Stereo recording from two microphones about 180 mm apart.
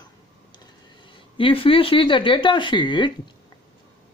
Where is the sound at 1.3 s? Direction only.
30° left (ahead or behind).